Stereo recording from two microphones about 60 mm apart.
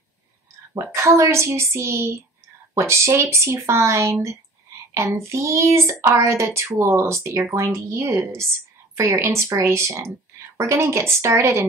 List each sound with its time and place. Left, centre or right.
0.9 s speech: right